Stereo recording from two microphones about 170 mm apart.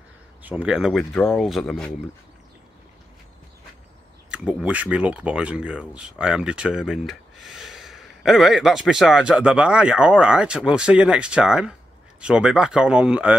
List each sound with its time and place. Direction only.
0.4 s speech: 10° right (ahead or behind)
4.3 s speech: 5° right (ahead or behind)